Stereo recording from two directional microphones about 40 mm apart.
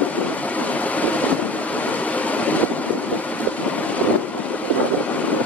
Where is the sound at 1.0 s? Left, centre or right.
Left.